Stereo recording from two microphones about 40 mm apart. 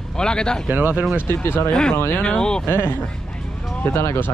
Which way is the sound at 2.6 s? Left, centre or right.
Left.